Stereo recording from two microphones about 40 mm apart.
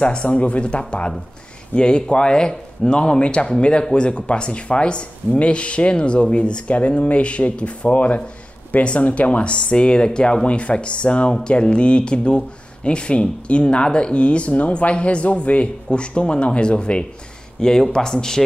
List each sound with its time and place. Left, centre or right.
0.0 s speech: left
9.5 s speech: left
17.6 s speech: centre